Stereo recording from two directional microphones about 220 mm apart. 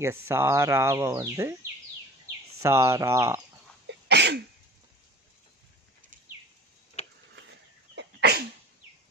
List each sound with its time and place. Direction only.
0.0 s speech: 10° right (ahead or behind)
2.6 s speech: 10° right (ahead or behind)
3.8 s sneeze: 50° right (ahead or behind)
7.0 s tick-tock: 30° left (ahead or behind)
7.9 s sneeze: 50° right (ahead or behind)